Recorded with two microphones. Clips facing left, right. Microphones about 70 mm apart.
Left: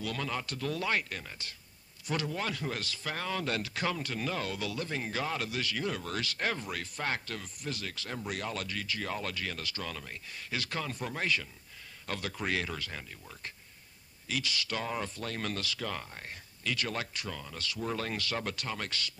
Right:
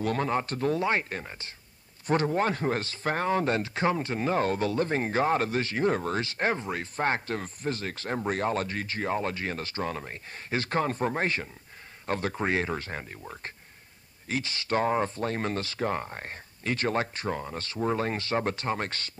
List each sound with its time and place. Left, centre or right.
0.0 s a man's voice: right